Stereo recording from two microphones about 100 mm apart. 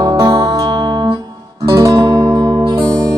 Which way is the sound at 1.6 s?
35° right (ahead or behind).